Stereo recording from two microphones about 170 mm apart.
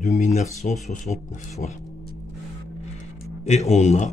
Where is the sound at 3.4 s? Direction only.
40° left (ahead or behind).